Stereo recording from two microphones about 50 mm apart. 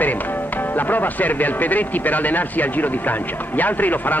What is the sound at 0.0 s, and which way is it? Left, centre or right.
Speech, left.